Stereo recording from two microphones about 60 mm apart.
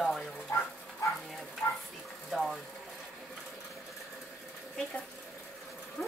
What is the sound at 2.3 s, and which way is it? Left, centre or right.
Speech, centre.